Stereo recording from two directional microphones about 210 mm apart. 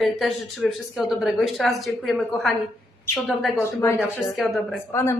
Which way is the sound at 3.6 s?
10° left (ahead or behind).